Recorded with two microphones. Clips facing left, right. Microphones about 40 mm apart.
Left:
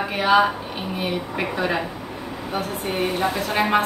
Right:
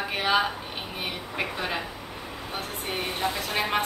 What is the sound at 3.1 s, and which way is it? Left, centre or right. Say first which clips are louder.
Speech: left 6 dB; left.